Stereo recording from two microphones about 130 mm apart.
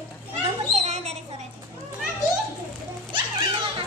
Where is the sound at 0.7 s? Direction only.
55° right (ahead or behind).